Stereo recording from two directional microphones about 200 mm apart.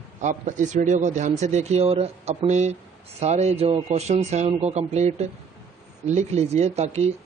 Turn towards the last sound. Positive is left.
turn(degrees=-35)  # may be behind; listen again after turning